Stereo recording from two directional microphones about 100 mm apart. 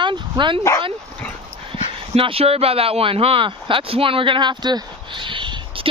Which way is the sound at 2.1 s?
75° right (ahead or behind).